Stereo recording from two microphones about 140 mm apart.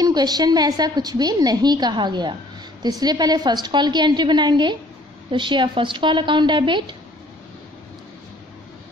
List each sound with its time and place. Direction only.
0.0 s a woman's voice: 30° right (ahead or behind)